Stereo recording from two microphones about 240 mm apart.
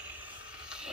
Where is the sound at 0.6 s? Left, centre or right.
Centre.